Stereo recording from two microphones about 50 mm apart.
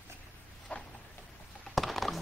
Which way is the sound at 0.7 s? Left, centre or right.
Left.